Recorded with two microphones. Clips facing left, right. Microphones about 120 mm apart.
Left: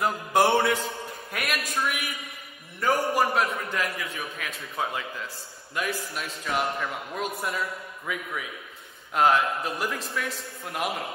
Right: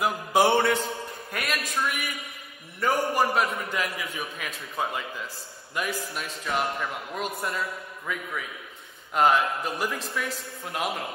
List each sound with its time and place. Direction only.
0.0 s mantra: centre (ahead or behind)
2.8 s a man's voice: centre (ahead or behind)